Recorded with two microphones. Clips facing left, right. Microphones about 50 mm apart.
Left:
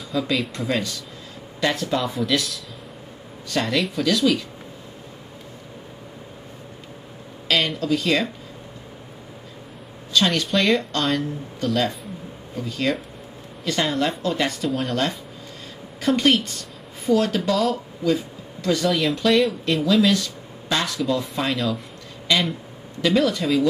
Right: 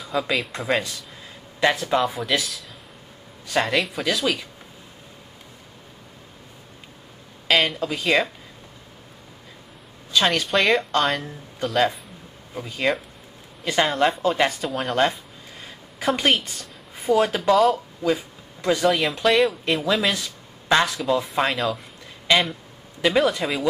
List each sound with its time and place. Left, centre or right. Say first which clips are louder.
0.0 s speech: even; centre
7.4 s a sound: right 2 dB; centre
7.8 s speech: even; centre
10.1 s speech: even; centre
14.0 s speech: right 3 dB; right
14.5 s speech: left 2 dB; centre
16.2 s speech: left 2 dB; centre
20.8 s speech: right 1 dB; centre
22.3 s speech: right 2 dB; right